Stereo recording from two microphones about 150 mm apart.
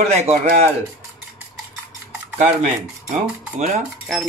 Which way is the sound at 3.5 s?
50° right (ahead or behind).